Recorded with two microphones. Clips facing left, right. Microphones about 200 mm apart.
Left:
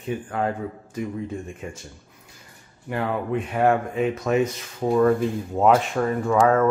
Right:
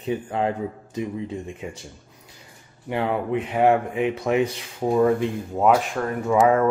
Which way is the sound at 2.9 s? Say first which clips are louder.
Right 2 dB; 20° right (ahead or behind).